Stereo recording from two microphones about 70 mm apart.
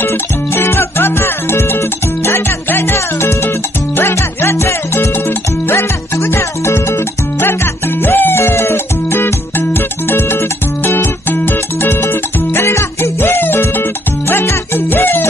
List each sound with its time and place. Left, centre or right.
0.6 s music: left